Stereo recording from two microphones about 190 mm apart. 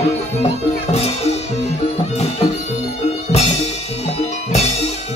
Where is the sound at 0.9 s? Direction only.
35° left (ahead or behind).